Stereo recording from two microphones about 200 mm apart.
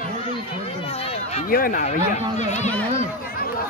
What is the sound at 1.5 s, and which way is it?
Speech, 45° left (ahead or behind).